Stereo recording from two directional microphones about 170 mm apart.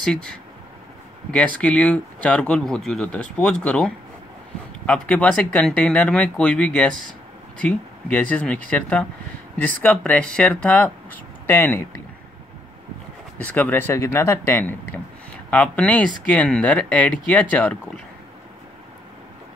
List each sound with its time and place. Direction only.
0.0 s speech: 5° left (ahead or behind)
1.6 s speech: 5° left (ahead or behind)
8.1 s speech: 10° left (ahead or behind)
13.4 s speech: 10° left (ahead or behind)